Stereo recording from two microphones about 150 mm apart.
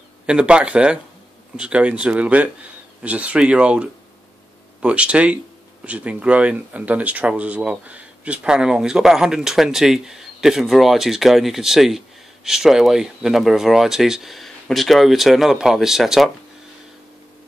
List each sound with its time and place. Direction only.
0.3 s speech: 5° right (ahead or behind)